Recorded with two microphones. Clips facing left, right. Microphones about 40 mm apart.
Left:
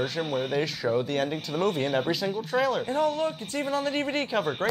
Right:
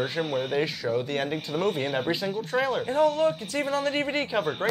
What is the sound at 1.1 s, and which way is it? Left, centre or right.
Speech, centre.